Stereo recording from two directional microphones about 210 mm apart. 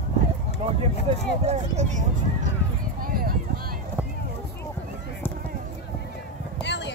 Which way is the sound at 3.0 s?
45° right (ahead or behind).